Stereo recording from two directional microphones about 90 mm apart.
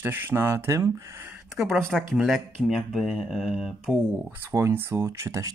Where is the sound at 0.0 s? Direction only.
25° right (ahead or behind).